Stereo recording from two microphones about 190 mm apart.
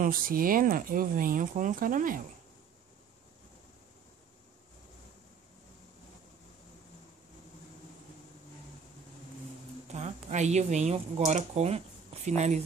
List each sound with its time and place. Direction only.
0.0 s speech: 50° right (ahead or behind)
9.8 s speech: 40° right (ahead or behind)